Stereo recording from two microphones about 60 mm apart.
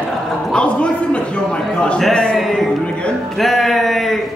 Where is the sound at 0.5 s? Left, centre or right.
Centre.